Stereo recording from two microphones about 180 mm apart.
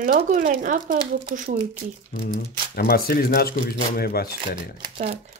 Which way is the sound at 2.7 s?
55° left (ahead or behind).